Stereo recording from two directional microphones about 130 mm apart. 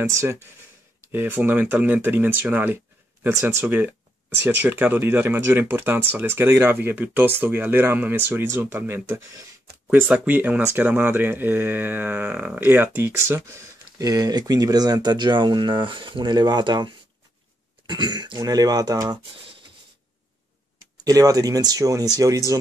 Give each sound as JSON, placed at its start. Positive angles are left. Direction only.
{"t": 0.1, "sound": "speech", "side_deg": -25}
{"t": 9.8, "sound": "speech", "side_deg": -10}
{"t": 21.0, "sound": "speech", "side_deg": -30}